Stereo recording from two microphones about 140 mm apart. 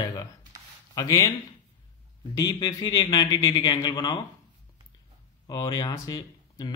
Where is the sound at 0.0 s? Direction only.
30° left (ahead or behind).